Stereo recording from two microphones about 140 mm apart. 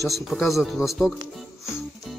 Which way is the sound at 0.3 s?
Centre (ahead or behind).